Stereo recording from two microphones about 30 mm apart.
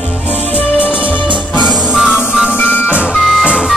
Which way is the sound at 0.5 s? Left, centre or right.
Left.